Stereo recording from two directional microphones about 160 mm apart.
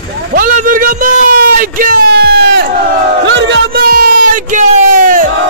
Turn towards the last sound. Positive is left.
turn(degrees=-55)  # may be behind; listen again after turning